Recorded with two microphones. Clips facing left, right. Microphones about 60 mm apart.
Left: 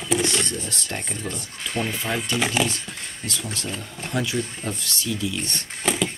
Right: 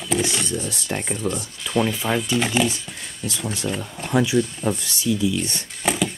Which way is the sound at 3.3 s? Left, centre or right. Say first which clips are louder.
Right 3 dB; centre.